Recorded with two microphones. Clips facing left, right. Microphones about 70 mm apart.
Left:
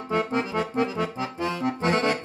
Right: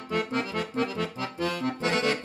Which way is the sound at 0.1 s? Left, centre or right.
Left.